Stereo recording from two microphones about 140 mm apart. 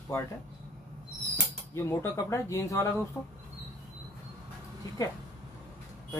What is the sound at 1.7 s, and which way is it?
Speech, 20° left (ahead or behind).